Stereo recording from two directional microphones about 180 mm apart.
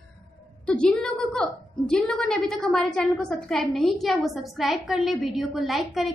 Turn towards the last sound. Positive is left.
turn(degrees=0)  # may be behind; listen again after turning